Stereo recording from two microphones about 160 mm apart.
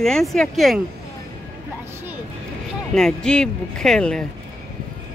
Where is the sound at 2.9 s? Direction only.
5° left (ahead or behind).